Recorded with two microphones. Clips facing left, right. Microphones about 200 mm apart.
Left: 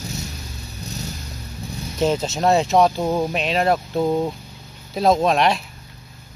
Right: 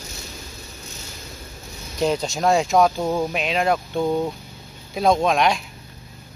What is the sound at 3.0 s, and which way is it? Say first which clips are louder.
Speech: left 1 dB; 15° left (ahead or behind).